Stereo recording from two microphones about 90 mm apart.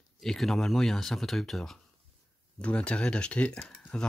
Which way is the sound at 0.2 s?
5° left (ahead or behind).